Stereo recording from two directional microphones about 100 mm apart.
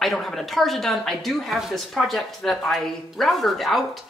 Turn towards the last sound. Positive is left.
turn(degrees=0)  # may be behind; listen again after turning